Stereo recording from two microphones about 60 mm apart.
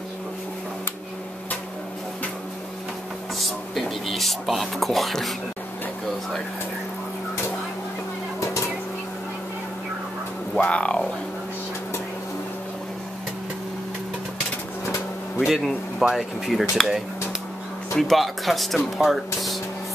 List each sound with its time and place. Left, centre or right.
3.7 s speech: centre
10.6 s speech: left
15.4 s speech: centre